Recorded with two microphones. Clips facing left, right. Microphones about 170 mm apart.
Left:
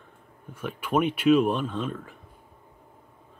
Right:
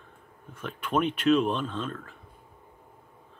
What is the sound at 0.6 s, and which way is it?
Speech, 10° left (ahead or behind).